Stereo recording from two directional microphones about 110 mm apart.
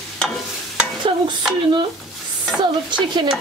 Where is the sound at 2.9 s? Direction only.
45° right (ahead or behind).